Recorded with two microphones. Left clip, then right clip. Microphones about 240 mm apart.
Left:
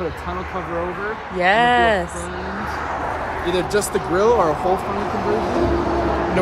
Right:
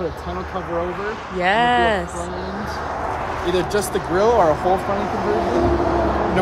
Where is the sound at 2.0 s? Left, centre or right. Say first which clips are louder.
Even; centre.